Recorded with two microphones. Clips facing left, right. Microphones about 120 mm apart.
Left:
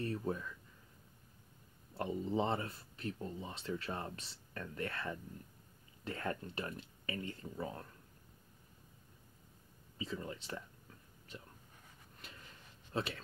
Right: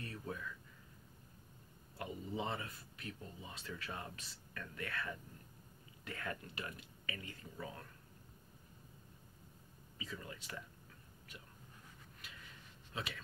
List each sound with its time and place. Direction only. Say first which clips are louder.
0.0 s speech: left 7 dB; 35° left (ahead or behind)
2.0 s speech: left 7 dB; 35° left (ahead or behind)
9.9 s speech: left 6 dB; 30° left (ahead or behind)
12.9 s speech: left 7 dB; 40° left (ahead or behind)